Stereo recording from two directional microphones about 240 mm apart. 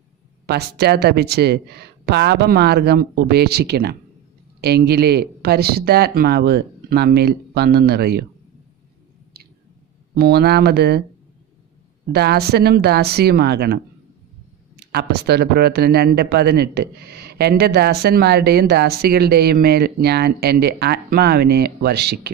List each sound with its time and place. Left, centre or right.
0.5 s speech: right
10.1 s speech: right
12.1 s speech: right
14.8 s speech: right